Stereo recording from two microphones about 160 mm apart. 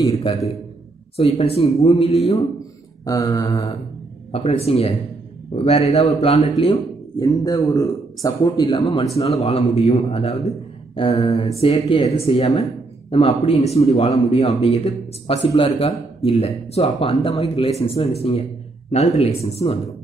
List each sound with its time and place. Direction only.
0.1 s speech: 35° left (ahead or behind)
3.1 s a man's voice: 20° left (ahead or behind)
4.3 s speech: 40° left (ahead or behind)
7.2 s a man's voice: 20° left (ahead or behind); by 19.8 s 40° left (ahead or behind)